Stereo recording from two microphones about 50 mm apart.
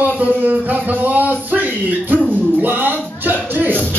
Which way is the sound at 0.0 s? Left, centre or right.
Right.